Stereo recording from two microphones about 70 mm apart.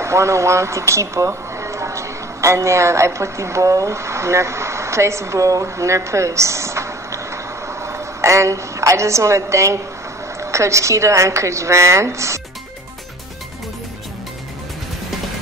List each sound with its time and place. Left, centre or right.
0.0 s a woman's voice: right